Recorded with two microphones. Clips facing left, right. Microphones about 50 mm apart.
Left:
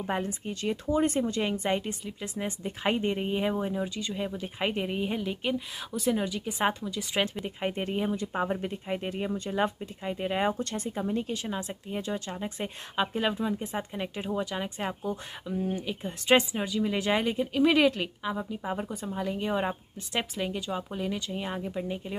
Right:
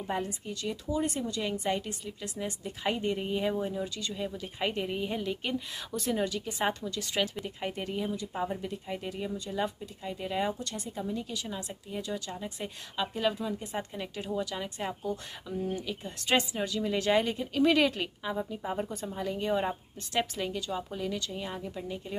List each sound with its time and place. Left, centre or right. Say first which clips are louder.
0.0 s a woman's voice: left 2 dB; left; by 7.1 s centre
7.4 s a woman's voice: left 4 dB; left
15.4 s speech: left 3 dB; centre
15.7 s a woman's voice: left 2 dB; left